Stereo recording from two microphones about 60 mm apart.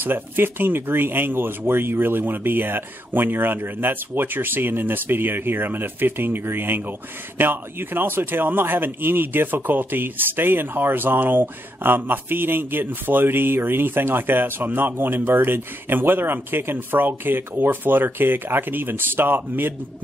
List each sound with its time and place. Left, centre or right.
0.0 s speech: right